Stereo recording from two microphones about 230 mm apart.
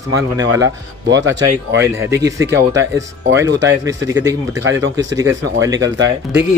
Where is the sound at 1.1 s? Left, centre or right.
Right.